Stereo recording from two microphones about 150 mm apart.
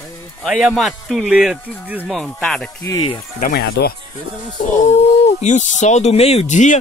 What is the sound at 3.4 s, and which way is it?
Speech, 90° left.